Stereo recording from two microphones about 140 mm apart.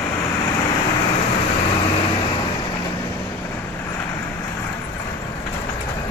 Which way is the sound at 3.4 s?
20° left (ahead or behind).